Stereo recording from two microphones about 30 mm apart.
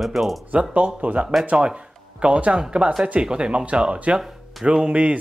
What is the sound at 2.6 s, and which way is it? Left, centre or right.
Speech, right.